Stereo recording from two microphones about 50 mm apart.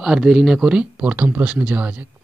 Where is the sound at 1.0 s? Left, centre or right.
Right.